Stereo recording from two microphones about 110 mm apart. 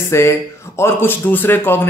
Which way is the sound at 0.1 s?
25° left (ahead or behind).